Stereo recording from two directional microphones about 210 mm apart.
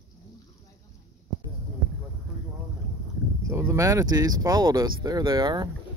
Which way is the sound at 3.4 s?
15° right (ahead or behind).